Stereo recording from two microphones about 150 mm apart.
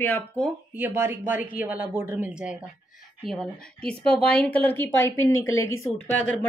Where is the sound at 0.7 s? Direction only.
15° right (ahead or behind).